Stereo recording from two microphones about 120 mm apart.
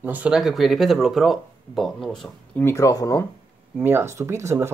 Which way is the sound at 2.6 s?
25° left (ahead or behind).